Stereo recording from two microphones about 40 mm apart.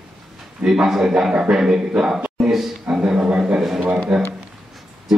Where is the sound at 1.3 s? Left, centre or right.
Right.